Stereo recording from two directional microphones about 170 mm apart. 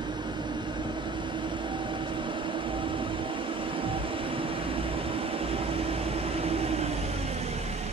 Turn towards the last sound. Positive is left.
turn(degrees=-35)  # may be behind; listen again after turning